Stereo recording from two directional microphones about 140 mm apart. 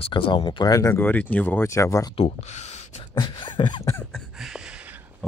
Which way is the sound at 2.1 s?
50° left (ahead or behind).